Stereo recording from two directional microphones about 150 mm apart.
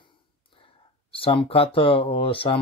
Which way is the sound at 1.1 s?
40° left (ahead or behind).